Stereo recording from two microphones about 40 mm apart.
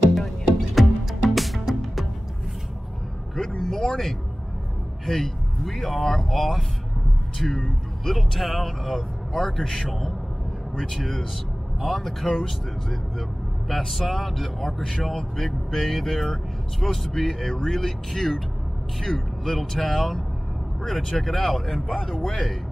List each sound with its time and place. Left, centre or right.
0.7 s music: centre
3.3 s vehicle: centre
3.9 s a man's voice: centre
10.8 s speech: centre
15.0 s speech: centre